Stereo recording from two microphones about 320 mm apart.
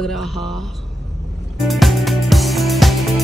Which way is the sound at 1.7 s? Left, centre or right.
Centre.